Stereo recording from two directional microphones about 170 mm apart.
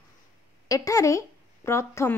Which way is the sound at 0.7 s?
20° left (ahead or behind).